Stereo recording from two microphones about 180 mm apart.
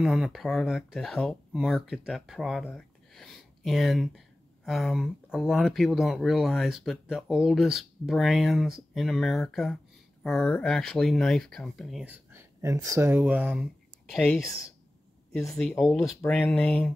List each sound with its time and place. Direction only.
0.0 s speech: centre (ahead or behind)
14.4 s speech: 20° left (ahead or behind)
15.3 s speech: centre (ahead or behind)